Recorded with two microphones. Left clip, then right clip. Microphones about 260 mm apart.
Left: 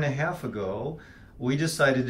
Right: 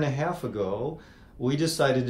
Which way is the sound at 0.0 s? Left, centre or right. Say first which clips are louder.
Even; centre.